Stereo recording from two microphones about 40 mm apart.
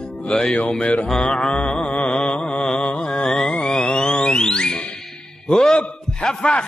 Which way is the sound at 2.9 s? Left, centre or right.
Centre.